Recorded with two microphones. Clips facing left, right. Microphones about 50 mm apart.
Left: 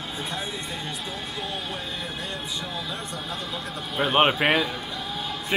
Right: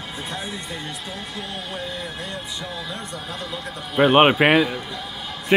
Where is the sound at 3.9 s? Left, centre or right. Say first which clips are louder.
Right 6 dB; right.